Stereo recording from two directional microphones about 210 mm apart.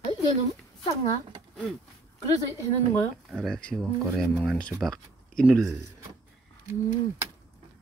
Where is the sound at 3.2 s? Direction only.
Centre (ahead or behind).